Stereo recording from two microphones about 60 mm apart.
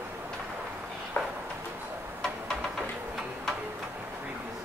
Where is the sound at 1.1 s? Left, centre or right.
Left.